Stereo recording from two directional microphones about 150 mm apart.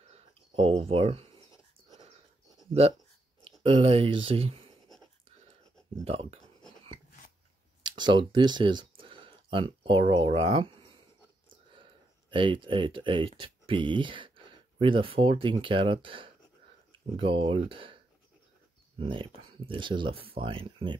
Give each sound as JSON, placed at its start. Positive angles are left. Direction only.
{"t": 0.1, "sound": "a sound", "side_deg": -40}
{"t": 3.6, "sound": "speech", "side_deg": -40}
{"t": 6.0, "sound": "speech", "side_deg": -40}
{"t": 8.0, "sound": "speech", "side_deg": -30}
{"t": 11.7, "sound": "a sound", "side_deg": -35}
{"t": 13.4, "sound": "speech", "side_deg": -35}